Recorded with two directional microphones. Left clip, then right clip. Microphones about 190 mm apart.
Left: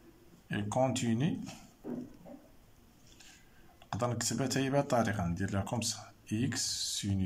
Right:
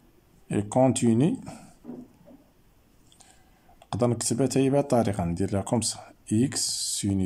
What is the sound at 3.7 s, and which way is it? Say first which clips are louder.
Speech: right 8 dB; 20° right (ahead or behind).